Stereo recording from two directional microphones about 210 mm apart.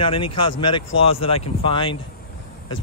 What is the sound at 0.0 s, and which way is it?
Speech, 25° left (ahead or behind).